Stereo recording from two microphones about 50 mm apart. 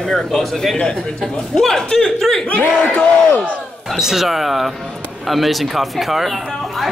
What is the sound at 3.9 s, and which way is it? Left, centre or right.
Speech, centre.